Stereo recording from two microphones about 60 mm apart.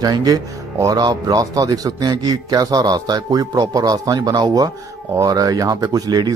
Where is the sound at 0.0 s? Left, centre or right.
Right.